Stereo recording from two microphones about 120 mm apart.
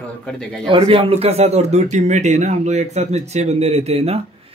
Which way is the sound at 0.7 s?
50° right (ahead or behind).